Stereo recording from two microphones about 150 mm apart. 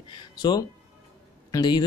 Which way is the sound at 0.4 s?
30° left (ahead or behind).